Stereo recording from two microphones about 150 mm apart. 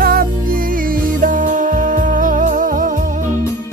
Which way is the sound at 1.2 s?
65° right (ahead or behind).